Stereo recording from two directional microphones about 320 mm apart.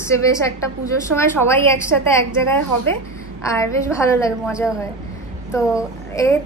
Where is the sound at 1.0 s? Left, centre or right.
Centre.